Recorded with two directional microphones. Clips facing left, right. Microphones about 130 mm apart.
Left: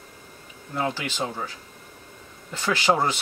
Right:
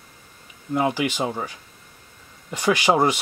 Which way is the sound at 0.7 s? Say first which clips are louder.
Right 6 dB; 15° right (ahead or behind).